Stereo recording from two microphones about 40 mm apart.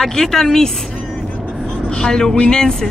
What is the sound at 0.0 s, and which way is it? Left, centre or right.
Speech, centre.